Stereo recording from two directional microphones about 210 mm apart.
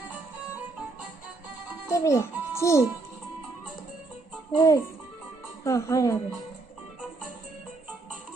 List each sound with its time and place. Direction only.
1.9 s a child's voice: 15° left (ahead or behind)
4.6 s speech: 15° left (ahead or behind)